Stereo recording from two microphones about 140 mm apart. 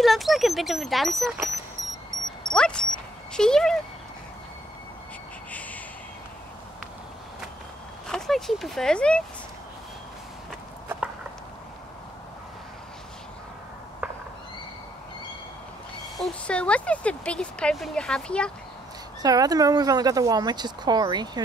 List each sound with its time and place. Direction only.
0.0 s speech: centre (ahead or behind)
2.5 s speech: 5° left (ahead or behind)
5.5 s reversing beeps: 10° left (ahead or behind)
8.1 s speech: centre (ahead or behind)
14.0 s owl: 15° right (ahead or behind)
16.2 s speech: 5° left (ahead or behind)
19.2 s speech: 25° right (ahead or behind)